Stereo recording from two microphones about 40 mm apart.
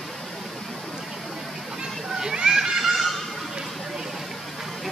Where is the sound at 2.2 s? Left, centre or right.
Centre.